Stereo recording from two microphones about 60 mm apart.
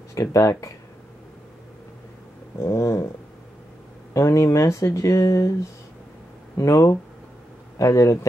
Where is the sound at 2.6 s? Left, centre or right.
Left.